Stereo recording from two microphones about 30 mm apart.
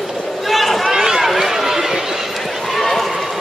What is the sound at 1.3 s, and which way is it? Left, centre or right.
Chatter, centre.